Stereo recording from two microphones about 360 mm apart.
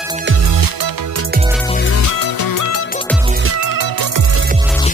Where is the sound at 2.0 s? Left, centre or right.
Left.